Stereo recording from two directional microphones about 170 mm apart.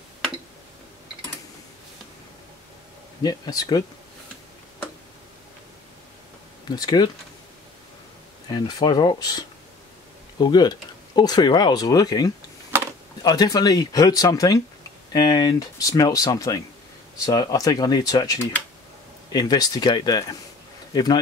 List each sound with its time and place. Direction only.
3.2 s speech: 20° left (ahead or behind)
6.7 s speech: 25° left (ahead or behind)
8.5 s speech: 25° left (ahead or behind)